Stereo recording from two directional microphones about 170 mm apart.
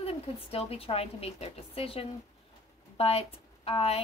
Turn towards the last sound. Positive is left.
turn(degrees=35)  # may be behind; listen again after turning